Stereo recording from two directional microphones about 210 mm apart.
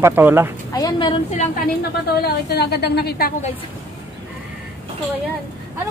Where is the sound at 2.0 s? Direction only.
50° left (ahead or behind).